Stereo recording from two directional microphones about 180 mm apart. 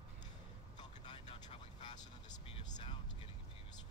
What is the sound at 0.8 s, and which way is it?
Vehicle, 25° left (ahead or behind).